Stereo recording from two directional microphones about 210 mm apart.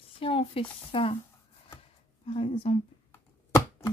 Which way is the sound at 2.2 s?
25° left (ahead or behind).